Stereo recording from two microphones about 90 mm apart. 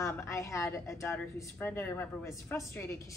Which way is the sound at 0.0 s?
35° left (ahead or behind).